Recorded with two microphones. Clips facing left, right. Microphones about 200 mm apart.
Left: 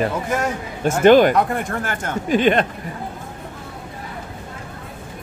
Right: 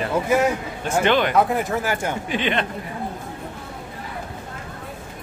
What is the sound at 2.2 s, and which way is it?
Speech, 45° left (ahead or behind).